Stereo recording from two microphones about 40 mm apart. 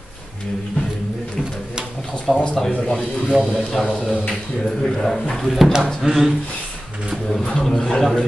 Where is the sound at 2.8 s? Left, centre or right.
Centre.